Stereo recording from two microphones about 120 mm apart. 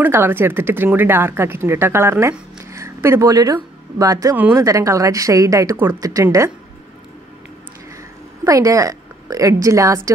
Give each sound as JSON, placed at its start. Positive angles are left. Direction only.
{"t": 0.0, "sound": "speech", "side_deg": -15}
{"t": 8.5, "sound": "a woman's voice", "side_deg": -25}